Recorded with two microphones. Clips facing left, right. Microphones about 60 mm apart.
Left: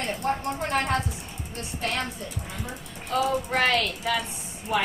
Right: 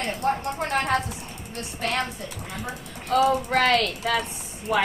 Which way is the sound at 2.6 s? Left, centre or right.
Right.